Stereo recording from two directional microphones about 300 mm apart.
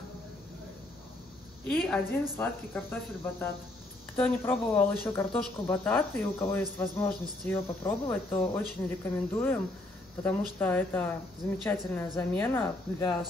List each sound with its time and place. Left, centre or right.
1.7 s speech: centre